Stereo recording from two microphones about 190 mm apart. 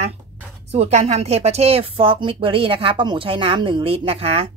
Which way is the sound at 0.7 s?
35° right (ahead or behind).